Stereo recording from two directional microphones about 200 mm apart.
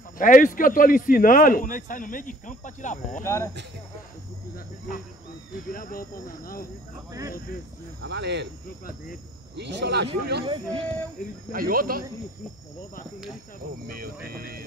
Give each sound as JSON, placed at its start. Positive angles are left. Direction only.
{"t": 0.2, "sound": "a man's voice", "side_deg": 40}
{"t": 3.2, "sound": "speech", "side_deg": 15}
{"t": 5.7, "sound": "speech", "side_deg": 45}
{"t": 7.1, "sound": "speech", "side_deg": -15}
{"t": 8.0, "sound": "speech", "side_deg": -60}
{"t": 9.6, "sound": "speech", "side_deg": -60}
{"t": 10.4, "sound": "speech", "side_deg": -25}
{"t": 11.5, "sound": "speech", "side_deg": -45}
{"t": 13.8, "sound": "speech", "side_deg": -45}